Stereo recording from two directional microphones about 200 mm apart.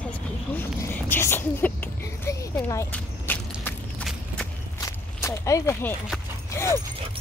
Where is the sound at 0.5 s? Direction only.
10° left (ahead or behind).